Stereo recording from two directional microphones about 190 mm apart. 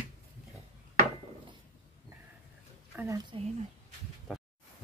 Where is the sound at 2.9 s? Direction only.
15° right (ahead or behind).